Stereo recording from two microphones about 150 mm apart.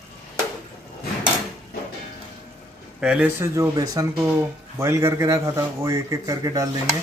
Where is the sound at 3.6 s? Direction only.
25° right (ahead or behind).